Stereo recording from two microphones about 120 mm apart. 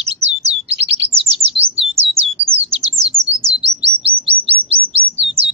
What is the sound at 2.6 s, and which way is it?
Bird, 55° right (ahead or behind).